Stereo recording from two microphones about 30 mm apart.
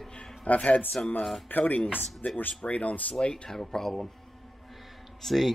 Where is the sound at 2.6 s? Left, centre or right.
Left.